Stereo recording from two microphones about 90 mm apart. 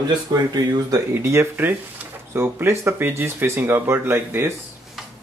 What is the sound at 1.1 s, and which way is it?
Speech, 30° right (ahead or behind).